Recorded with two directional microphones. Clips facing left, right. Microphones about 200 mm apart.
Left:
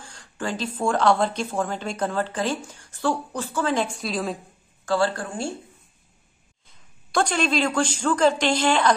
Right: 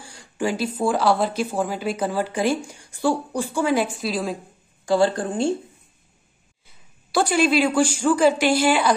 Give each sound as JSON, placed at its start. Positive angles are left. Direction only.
{"t": 0.0, "sound": "speech", "side_deg": -10}
{"t": 4.8, "sound": "a woman's voice", "side_deg": -15}
{"t": 6.6, "sound": "speech", "side_deg": -5}